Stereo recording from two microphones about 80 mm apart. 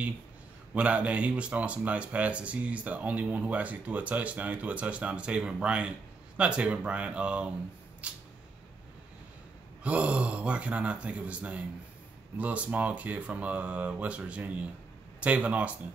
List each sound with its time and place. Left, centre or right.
0.7 s speech: centre
9.8 s speech: centre